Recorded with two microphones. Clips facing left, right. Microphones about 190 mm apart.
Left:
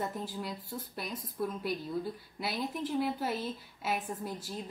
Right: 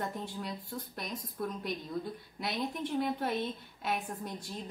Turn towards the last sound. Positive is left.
turn(degrees=0)  # may be behind; listen again after turning